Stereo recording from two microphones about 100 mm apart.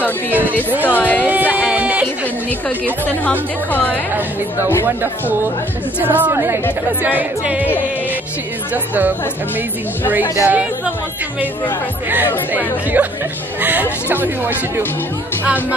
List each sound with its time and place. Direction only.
0.8 s speech: 15° left (ahead or behind)
1.2 s music: 15° right (ahead or behind)
3.3 s speech: 15° left (ahead or behind)
5.9 s a woman's voice: 15° right (ahead or behind)
7.0 s music: 15° right (ahead or behind)
8.7 s music: 15° right (ahead or behind)
10.4 s music: 15° right (ahead or behind)
13.0 s music: 15° right (ahead or behind)
14.0 s a woman's voice: 20° right (ahead or behind)